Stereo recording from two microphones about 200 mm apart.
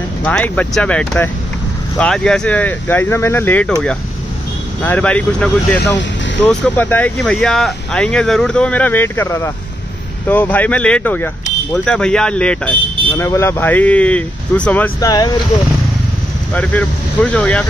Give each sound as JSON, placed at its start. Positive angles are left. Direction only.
{"t": 0.2, "sound": "speech", "side_deg": 5}
{"t": 15.0, "sound": "speech", "side_deg": 20}
{"t": 16.5, "sound": "speech", "side_deg": 5}